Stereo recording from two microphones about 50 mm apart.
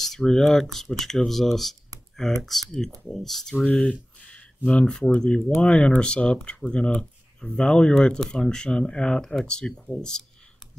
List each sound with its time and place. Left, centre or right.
0.0 s speech: centre
3.5 s speech: left
9.2 s speech: centre